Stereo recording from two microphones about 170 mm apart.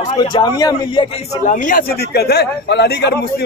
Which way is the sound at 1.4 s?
50° left (ahead or behind).